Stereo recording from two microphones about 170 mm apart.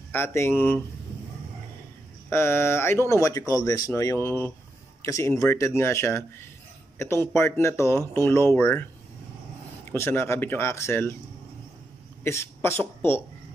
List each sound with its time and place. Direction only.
0.1 s speech: 15° left (ahead or behind)
2.2 s speech: 15° left (ahead or behind)
7.3 s speech: 15° left (ahead or behind)
9.9 s speech: 15° left (ahead or behind)
12.2 s speech: 15° left (ahead or behind)